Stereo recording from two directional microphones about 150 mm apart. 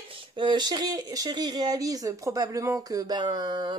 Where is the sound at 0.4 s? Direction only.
30° right (ahead or behind).